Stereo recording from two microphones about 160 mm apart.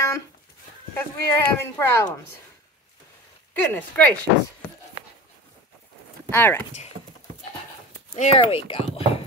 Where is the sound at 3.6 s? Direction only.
10° left (ahead or behind).